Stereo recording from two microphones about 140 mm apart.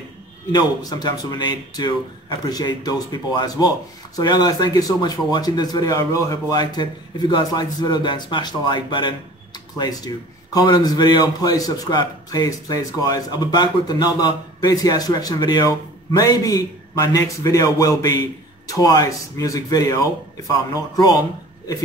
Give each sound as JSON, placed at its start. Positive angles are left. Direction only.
{"t": 0.5, "sound": "a man's voice", "side_deg": 30}